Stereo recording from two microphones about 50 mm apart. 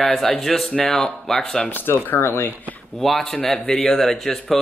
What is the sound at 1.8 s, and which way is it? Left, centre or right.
Speech, left.